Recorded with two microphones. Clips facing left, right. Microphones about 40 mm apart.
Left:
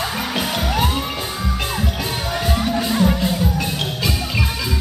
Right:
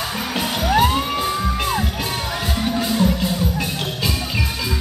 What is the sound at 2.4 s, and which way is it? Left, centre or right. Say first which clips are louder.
Music: left 3 dB; centre.